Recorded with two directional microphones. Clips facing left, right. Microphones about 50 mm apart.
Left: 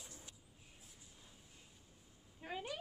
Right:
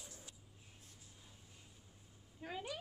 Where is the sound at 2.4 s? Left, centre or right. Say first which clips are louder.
Even; centre.